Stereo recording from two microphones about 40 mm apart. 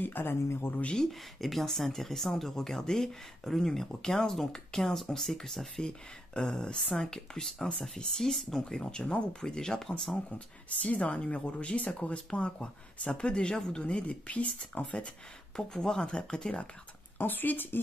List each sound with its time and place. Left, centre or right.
0.0 s speech: left
1.4 s speech: centre
5.8 s speech: left
10.8 s speech: left
15.5 s speech: centre
17.2 s speech: left